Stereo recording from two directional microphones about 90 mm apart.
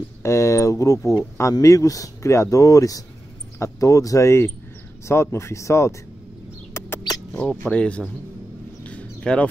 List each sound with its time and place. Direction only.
0.2 s speech: 35° left (ahead or behind)
7.1 s speech: 5° left (ahead or behind)
8.8 s a sound: 10° left (ahead or behind)